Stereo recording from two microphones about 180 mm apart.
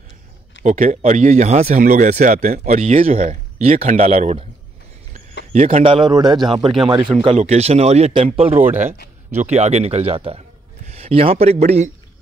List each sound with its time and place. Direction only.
0.7 s speech: 45° right (ahead or behind)
5.5 s a man's voice: 35° right (ahead or behind)